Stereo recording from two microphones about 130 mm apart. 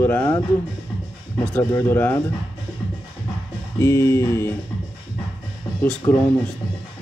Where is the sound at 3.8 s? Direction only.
20° left (ahead or behind).